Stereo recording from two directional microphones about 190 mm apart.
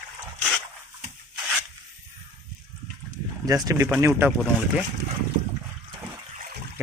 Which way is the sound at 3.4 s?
20° right (ahead or behind).